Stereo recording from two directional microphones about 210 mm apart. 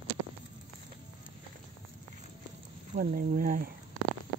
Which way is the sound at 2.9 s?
45° right (ahead or behind).